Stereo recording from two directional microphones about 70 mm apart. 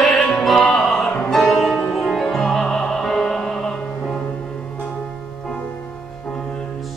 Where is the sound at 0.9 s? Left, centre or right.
Centre.